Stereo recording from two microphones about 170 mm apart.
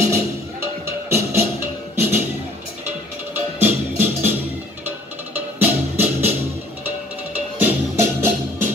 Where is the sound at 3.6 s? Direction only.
10° right (ahead or behind).